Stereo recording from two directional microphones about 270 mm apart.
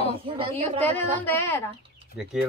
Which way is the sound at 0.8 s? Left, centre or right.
Centre.